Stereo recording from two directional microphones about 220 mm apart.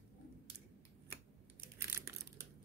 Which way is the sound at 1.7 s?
10° right (ahead or behind).